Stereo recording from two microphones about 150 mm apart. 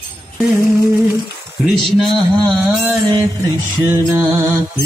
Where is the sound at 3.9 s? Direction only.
15° right (ahead or behind).